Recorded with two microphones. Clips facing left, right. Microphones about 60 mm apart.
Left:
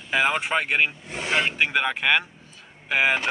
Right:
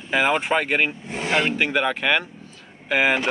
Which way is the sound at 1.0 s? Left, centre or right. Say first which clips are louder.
Right 3 dB; right.